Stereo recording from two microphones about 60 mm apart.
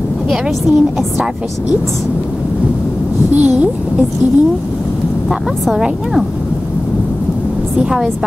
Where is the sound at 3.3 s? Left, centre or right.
Right.